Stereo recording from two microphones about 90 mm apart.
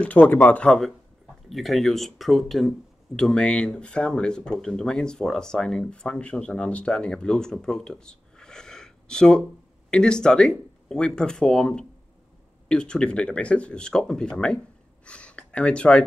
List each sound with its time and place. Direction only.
0.0 s speech: 15° left (ahead or behind)
1.5 s speech: centre (ahead or behind)